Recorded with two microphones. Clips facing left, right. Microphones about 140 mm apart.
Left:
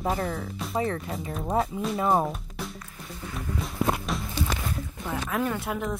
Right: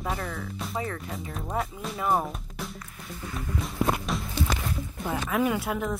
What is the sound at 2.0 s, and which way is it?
Speech, 25° left (ahead or behind).